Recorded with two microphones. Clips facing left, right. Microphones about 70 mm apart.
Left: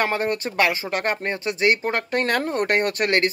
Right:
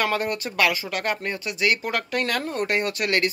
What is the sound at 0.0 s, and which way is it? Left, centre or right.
Speech, left.